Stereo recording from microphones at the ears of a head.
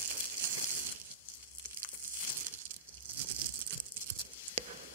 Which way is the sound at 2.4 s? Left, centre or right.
Right.